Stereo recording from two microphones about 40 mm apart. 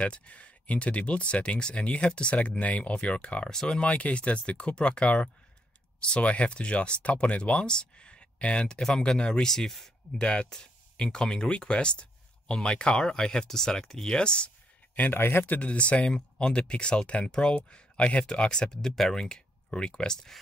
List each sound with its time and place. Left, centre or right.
0.0 s speech: left
3.4 s speech: centre
3.8 s speech: left
7.6 s speech: left
9.5 s speech: centre
10.1 s speech: left
15.1 s speech: left
15.4 s speech: left
15.7 s speech: left